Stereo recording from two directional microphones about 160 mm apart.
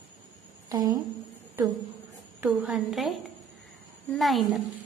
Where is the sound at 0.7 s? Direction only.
20° right (ahead or behind).